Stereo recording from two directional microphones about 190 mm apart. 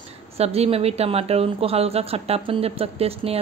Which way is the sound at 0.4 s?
30° right (ahead or behind).